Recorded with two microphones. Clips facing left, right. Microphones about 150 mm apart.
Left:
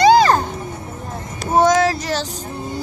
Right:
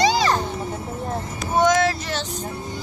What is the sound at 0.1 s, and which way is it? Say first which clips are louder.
Music: left 8 dB; 50° left (ahead or behind).